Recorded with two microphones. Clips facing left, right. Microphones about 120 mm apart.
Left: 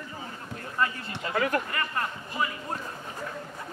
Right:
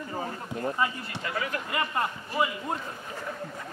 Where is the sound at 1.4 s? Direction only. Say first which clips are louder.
Left 7 dB; 50° left (ahead or behind).